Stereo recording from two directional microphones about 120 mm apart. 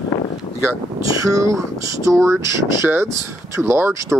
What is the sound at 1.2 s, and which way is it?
Speech, 25° right (ahead or behind).